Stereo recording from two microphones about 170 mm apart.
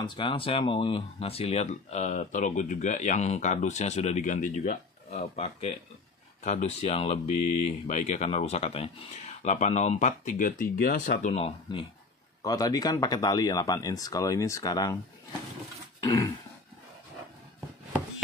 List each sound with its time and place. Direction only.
0.0 s speech: 30° left (ahead or behind)
12.4 s speech: 20° left (ahead or behind)
16.0 s throat clearing: 20° left (ahead or behind)